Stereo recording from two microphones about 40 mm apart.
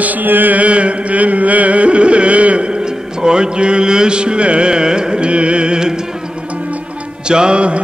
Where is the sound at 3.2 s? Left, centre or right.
Right.